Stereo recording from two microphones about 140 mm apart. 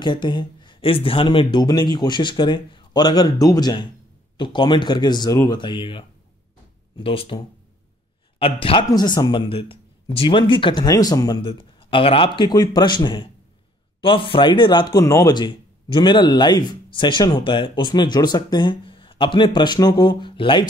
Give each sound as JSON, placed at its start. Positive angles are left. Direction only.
{"t": 0.0, "sound": "speech", "side_deg": 30}